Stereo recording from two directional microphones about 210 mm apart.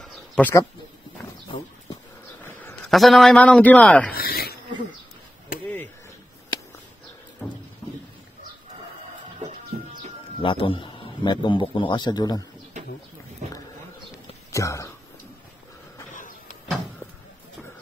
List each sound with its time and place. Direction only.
0.0 s bird: 10° left (ahead or behind)
2.4 s a man's voice: 5° left (ahead or behind)
4.1 s snake: 45° left (ahead or behind)
7.4 s a sound: 10° left (ahead or behind)
10.4 s a man's voice: 25° left (ahead or behind)
14.5 s speech: 15° left (ahead or behind)
16.1 s a sound: 40° left (ahead or behind)